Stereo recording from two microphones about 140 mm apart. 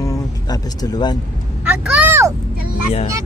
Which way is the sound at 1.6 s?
10° right (ahead or behind).